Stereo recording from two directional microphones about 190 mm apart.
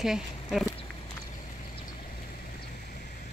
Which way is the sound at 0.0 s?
Centre (ahead or behind).